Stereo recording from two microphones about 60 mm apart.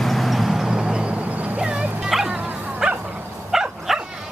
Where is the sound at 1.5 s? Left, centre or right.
Centre.